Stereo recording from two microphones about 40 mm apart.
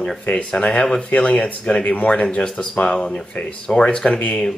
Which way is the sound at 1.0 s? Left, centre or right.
Left.